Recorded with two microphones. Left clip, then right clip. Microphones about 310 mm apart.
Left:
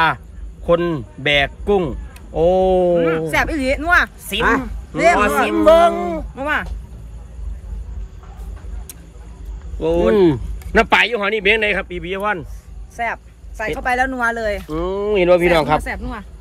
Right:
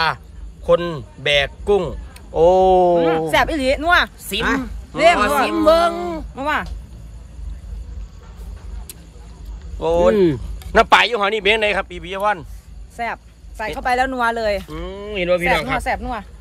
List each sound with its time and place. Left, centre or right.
0.7 s a man's voice: centre
3.0 s speech: right
3.9 s a man's voice: centre
6.3 s speech: centre
9.8 s a man's voice: centre
10.1 s speech: centre
10.7 s a man's voice: centre
14.7 s speech: centre
15.8 s speech: right